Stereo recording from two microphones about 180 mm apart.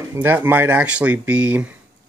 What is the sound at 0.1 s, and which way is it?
Speech, 10° right (ahead or behind).